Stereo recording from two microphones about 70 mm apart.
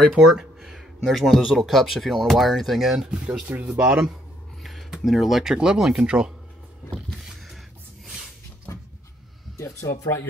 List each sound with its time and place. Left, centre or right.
0.0 s speech: centre
3.6 s speech: centre
4.6 s speech: centre
7.2 s a sound: centre
9.6 s speech: left